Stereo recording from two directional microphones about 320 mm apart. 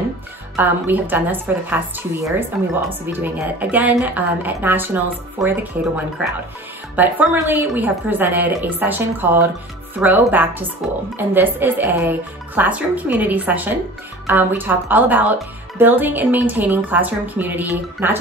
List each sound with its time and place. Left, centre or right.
0.6 s a woman's voice: centre